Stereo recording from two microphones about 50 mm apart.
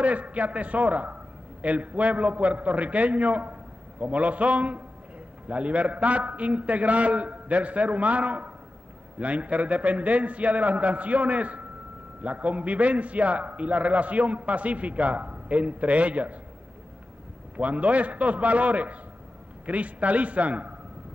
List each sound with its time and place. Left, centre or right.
0.0 s a man's voice: right
17.6 s a man's voice: right